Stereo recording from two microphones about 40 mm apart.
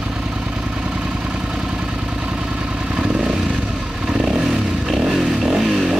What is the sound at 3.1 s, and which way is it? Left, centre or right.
Motorcycle, centre.